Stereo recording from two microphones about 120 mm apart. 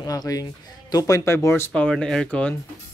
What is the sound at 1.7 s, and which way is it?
Speech, 10° left (ahead or behind).